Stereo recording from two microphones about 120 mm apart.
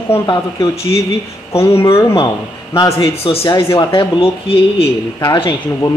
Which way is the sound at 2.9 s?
45° left (ahead or behind).